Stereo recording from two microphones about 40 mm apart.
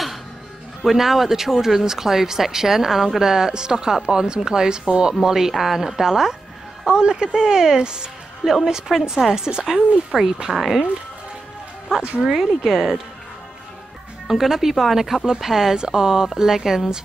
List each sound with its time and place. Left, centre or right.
0.8 s speech: centre
10.5 s speech: centre
12.4 s speech: centre
14.2 s speech: centre